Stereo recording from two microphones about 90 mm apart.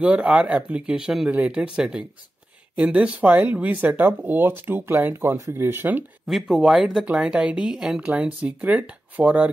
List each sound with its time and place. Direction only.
0.0 s speech: 15° right (ahead or behind)
6.2 s speech: centre (ahead or behind)